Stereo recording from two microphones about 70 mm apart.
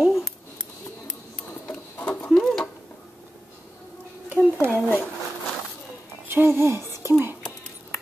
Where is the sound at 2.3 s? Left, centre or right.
Centre.